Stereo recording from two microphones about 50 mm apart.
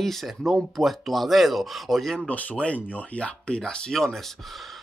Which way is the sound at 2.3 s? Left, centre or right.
Left.